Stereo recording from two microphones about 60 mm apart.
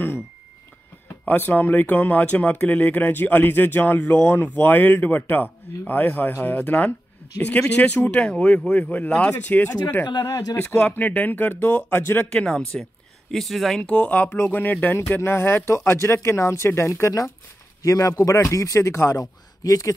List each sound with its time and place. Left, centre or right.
1.2 s speech: left; by 8.7 s centre
8.7 s speech: left
9.8 s speech: left
10.8 s speech: left
12.4 s speech: centre
13.3 s speech: centre
13.8 s speech: left
14.3 s speech: left
17.8 s a man's voice: left